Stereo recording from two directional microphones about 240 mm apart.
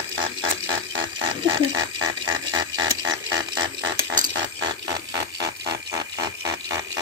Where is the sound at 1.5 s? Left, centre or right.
Centre.